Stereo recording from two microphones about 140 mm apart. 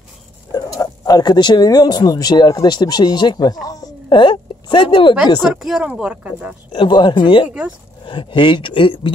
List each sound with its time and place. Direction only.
0.7 s a woman's voice: 25° left (ahead or behind)
5.4 s speech: 5° right (ahead or behind)
6.7 s speech: 35° left (ahead or behind)